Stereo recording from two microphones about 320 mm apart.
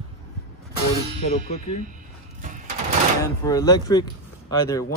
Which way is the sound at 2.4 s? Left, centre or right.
Right.